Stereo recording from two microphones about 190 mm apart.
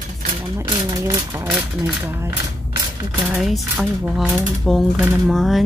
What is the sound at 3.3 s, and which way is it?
Speech, centre (ahead or behind).